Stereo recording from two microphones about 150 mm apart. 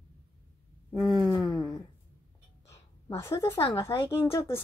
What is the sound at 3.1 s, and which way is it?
A woman's voice, 15° left (ahead or behind).